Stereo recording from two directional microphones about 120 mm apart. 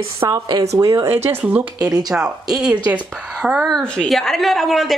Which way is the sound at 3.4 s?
5° right (ahead or behind).